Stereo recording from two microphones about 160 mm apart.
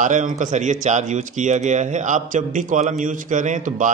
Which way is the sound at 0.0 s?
50° right (ahead or behind).